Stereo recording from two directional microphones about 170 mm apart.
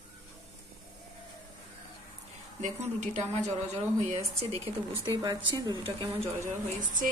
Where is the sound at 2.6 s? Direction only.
45° right (ahead or behind); by 6.1 s 25° right (ahead or behind).